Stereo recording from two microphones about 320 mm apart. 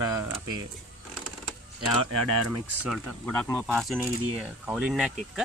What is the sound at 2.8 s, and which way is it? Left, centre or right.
Speech, centre.